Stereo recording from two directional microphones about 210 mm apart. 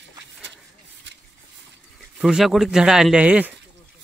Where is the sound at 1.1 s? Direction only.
55° right (ahead or behind).